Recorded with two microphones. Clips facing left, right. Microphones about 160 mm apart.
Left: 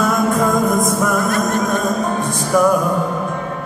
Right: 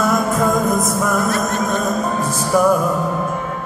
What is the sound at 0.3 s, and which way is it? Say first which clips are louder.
Music: left 1 dB; centre (ahead or behind).